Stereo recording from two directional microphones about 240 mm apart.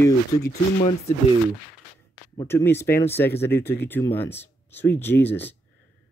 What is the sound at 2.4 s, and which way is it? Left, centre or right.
Speech, centre.